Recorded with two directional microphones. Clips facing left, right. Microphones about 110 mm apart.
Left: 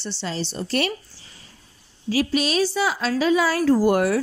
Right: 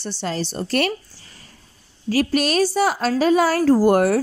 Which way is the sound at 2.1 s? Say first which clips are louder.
Right 2 dB; 50° right (ahead or behind).